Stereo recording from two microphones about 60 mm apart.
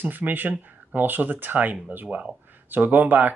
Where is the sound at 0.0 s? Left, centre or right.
Right.